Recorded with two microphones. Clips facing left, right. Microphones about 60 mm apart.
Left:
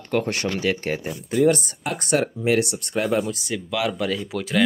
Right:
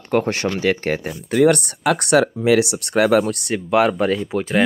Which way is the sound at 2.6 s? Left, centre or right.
Right.